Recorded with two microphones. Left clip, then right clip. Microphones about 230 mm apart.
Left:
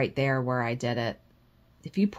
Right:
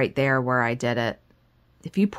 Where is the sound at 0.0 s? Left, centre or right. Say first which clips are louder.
Right 5 dB; right.